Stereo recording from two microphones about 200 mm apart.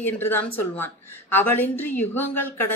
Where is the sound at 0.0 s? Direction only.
10° left (ahead or behind).